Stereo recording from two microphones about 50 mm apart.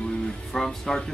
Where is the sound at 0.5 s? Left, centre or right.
Centre.